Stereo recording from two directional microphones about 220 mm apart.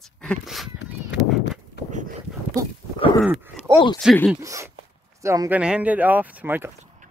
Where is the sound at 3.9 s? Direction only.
Centre (ahead or behind).